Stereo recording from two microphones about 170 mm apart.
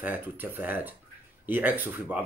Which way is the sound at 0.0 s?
10° right (ahead or behind).